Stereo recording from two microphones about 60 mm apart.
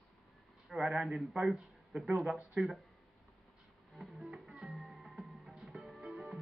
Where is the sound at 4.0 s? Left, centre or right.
Centre.